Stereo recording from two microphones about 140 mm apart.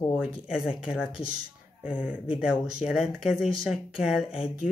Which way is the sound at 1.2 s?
65° right (ahead or behind).